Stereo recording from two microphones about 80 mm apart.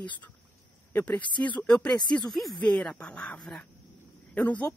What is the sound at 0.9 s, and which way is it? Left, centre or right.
Speech, left.